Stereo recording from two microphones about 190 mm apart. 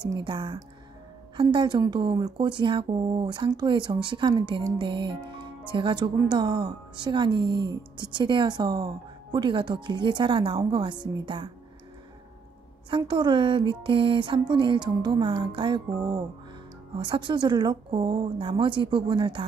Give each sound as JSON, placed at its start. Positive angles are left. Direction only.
{"t": 0.0, "sound": "a woman's voice", "side_deg": -25}
{"t": 12.9, "sound": "a woman's voice", "side_deg": -25}